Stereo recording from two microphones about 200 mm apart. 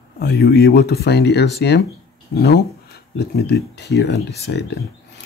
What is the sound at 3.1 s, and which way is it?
Speech, 55° left (ahead or behind).